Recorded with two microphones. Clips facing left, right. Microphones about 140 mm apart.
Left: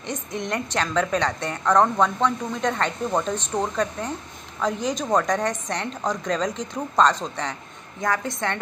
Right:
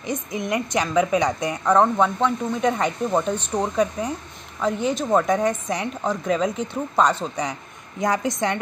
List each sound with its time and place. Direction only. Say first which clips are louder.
0.0 s a woman's voice: right 3 dB; 5° right (ahead or behind)